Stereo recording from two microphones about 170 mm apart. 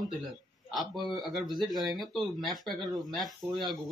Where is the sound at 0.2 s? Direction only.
Centre (ahead or behind).